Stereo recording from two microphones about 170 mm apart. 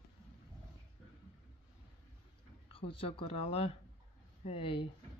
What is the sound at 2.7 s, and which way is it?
Speech, 30° left (ahead or behind).